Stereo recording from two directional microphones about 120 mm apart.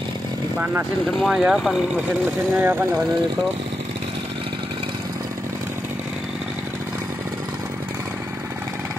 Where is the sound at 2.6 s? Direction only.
15° right (ahead or behind).